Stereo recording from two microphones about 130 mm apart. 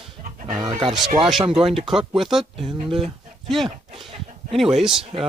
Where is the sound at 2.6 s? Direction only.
45° right (ahead or behind).